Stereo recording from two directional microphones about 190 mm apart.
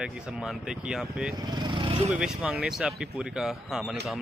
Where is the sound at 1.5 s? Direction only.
25° right (ahead or behind).